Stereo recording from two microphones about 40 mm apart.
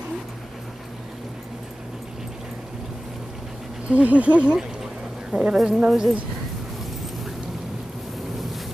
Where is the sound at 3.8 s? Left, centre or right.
Right.